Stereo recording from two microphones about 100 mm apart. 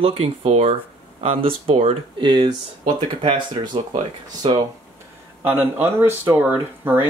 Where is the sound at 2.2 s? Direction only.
50° right (ahead or behind).